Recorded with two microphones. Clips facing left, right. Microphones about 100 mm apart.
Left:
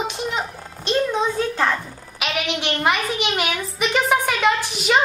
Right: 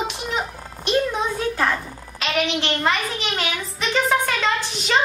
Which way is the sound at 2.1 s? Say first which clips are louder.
Right 2 dB; 15° left (ahead or behind).